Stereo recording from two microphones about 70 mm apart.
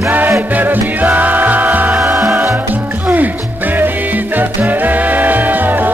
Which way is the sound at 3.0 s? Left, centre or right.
Right.